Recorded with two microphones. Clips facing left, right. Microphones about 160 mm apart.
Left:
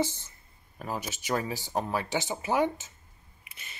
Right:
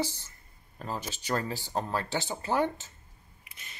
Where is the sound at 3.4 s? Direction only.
5° left (ahead or behind).